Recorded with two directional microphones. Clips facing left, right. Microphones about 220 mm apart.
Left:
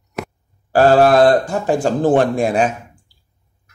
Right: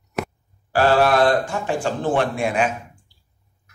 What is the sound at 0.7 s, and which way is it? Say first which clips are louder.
A man's voice: left 6 dB; 40° left (ahead or behind).